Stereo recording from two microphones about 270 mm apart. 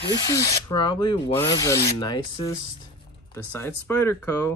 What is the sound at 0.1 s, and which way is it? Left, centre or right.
Speech, centre.